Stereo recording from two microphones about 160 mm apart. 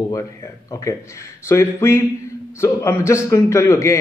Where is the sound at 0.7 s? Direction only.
20° left (ahead or behind).